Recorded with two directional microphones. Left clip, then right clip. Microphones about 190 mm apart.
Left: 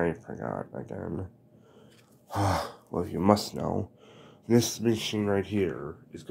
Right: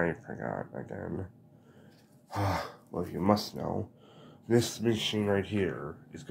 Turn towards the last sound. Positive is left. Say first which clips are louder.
# left 2 dB
turn(degrees=35)  # may be behind; listen again after turning